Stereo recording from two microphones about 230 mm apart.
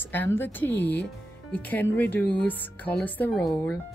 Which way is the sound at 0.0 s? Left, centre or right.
Centre.